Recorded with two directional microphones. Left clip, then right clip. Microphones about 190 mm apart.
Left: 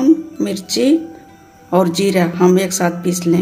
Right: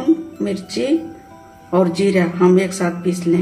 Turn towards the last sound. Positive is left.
turn(degrees=50)  # may be behind; listen again after turning